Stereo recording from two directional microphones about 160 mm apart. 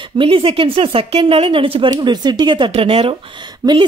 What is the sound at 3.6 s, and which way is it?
Speech, 25° right (ahead or behind).